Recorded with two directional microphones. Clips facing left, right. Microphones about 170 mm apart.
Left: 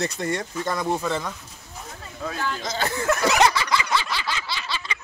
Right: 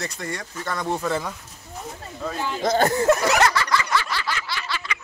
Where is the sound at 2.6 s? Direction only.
55° right (ahead or behind).